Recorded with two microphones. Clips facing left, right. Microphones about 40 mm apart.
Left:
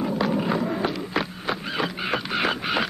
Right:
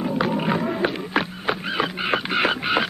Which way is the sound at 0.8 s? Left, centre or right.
Right.